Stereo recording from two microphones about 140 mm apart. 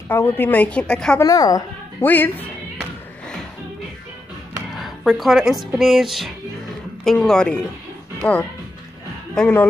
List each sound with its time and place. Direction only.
0.1 s a woman's voice: 15° left (ahead or behind)
1.2 s speech: 25° left (ahead or behind)
2.0 s a woman's voice: 15° left (ahead or behind)
4.7 s a woman's voice: centre (ahead or behind)
5.7 s music: centre (ahead or behind)
8.2 s a woman's voice: 10° left (ahead or behind)